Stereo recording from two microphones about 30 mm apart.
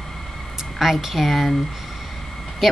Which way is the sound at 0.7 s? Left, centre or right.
Centre.